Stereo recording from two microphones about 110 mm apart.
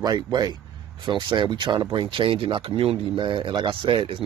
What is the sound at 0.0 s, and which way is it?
Speech, 35° right (ahead or behind).